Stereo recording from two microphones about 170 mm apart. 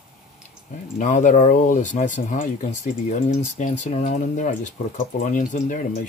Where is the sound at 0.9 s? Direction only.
45° left (ahead or behind).